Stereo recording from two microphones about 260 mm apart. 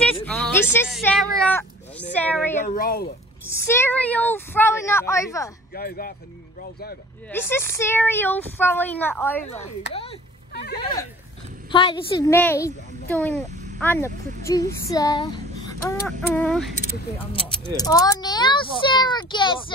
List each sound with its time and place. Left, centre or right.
0.0 s speech: centre
2.6 s speech: left
3.6 s speech: centre
5.7 s speech: left
7.2 s speech: centre
10.5 s speech: left
10.8 s speech: centre
17.3 s speech: centre